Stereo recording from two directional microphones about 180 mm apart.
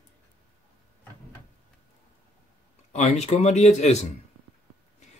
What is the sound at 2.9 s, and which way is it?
Speech, 35° left (ahead or behind).